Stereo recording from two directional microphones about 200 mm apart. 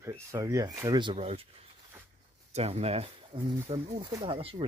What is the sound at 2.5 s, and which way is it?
Speech, 30° right (ahead or behind).